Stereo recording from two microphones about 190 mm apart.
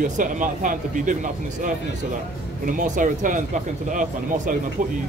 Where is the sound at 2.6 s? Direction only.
40° right (ahead or behind).